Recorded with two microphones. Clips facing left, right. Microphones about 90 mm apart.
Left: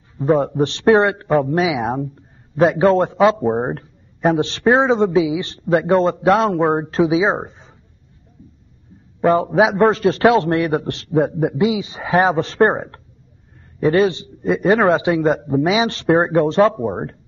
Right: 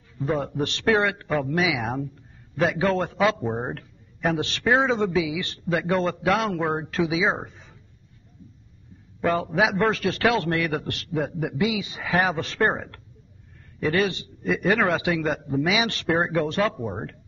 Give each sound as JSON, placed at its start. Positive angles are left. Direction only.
{"t": 0.2, "sound": "a man's voice", "side_deg": 30}
{"t": 9.2, "sound": "a man's voice", "side_deg": 30}